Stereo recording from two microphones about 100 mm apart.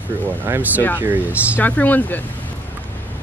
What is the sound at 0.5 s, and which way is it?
Speech, 15° right (ahead or behind).